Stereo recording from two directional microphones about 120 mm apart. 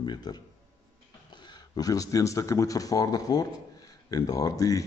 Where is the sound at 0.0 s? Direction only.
35° left (ahead or behind).